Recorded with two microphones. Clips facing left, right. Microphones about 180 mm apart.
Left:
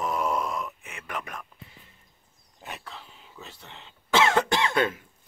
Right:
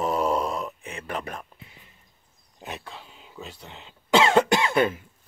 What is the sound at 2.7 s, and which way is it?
Speech, 15° right (ahead or behind).